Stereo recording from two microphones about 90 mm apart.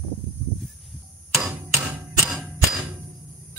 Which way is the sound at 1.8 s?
15° right (ahead or behind).